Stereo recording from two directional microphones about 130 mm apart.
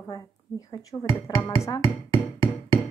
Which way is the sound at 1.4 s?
25° left (ahead or behind).